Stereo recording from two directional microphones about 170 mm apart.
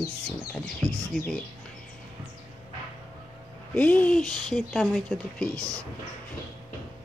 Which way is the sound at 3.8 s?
10° left (ahead or behind).